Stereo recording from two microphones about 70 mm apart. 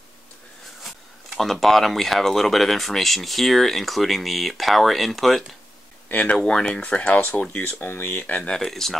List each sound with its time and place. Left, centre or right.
0.8 s speech: centre
6.0 s speech: left
6.4 s speech: centre
8.5 s speech: centre